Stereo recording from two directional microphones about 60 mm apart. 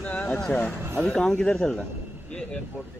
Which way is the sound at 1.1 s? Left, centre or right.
Centre.